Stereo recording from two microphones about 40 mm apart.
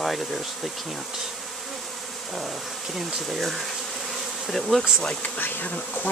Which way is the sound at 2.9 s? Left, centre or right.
Centre.